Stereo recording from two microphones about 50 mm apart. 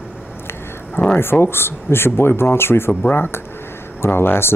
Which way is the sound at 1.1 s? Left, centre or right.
Left.